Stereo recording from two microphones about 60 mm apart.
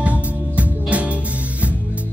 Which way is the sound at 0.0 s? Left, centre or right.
Right.